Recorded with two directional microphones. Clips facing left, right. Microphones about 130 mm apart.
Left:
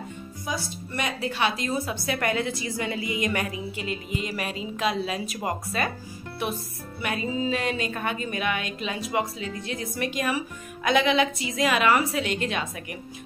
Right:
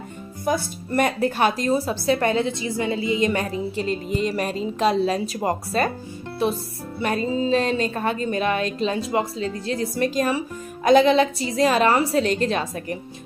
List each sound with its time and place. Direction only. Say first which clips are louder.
0.5 s speech: right 9 dB; 50° right (ahead or behind)
4.1 s speech: right 8 dB; 10° left (ahead or behind)
4.7 s speech: right 7 dB; 35° right (ahead or behind)